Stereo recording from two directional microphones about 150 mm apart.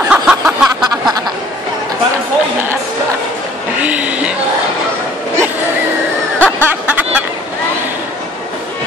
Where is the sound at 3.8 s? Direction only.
10° right (ahead or behind).